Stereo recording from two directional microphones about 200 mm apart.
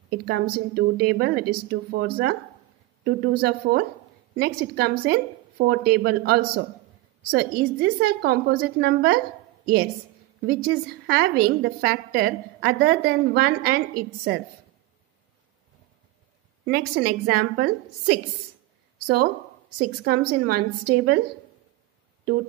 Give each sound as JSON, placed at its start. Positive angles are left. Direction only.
{"t": 0.1, "sound": "a woman's voice", "side_deg": -50}
{"t": 3.3, "sound": "a woman's voice", "side_deg": -50}
{"t": 10.4, "sound": "a woman's voice", "side_deg": -50}
{"t": 16.6, "sound": "a woman's voice", "side_deg": -50}
{"t": 19.8, "sound": "a woman's voice", "side_deg": -50}